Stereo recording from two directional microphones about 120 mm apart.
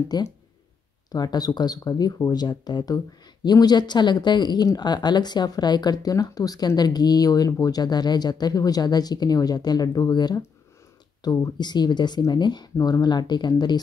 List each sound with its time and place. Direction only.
0.1 s speech: 35° left (ahead or behind)